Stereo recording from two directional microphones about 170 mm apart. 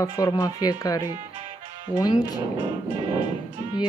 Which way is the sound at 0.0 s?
20° left (ahead or behind).